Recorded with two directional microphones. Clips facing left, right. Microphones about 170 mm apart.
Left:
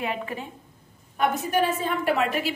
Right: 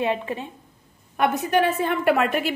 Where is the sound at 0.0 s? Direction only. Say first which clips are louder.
Right 5 dB; 25° right (ahead or behind).